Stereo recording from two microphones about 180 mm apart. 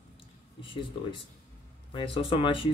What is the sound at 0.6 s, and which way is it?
Speech, 30° left (ahead or behind).